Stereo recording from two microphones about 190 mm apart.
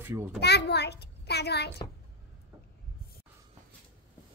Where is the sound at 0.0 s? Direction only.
10° right (ahead or behind).